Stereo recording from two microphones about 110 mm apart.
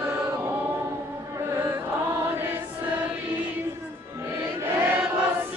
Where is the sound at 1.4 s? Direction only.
20° right (ahead or behind).